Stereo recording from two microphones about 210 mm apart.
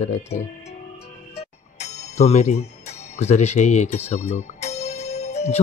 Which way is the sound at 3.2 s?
30° left (ahead or behind).